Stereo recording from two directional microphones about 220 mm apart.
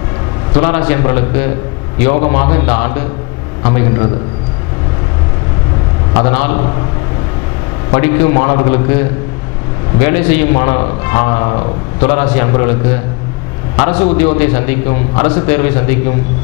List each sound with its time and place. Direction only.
0.6 s a man's voice: 10° left (ahead or behind)
6.1 s a man's voice: 10° left (ahead or behind)
7.9 s a man's voice: 15° left (ahead or behind)